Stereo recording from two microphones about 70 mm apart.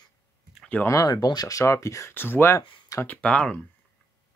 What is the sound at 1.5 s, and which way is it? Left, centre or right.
Speech, left.